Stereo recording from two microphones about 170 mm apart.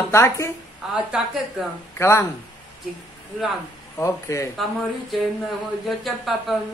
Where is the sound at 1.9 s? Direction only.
15° left (ahead or behind).